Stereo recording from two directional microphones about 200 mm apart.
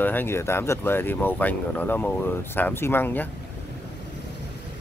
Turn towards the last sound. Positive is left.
turn(degrees=10)  # may be behind; listen again after turning